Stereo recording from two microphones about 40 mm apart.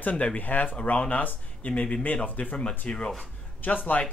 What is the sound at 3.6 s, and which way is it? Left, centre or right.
Speech, left.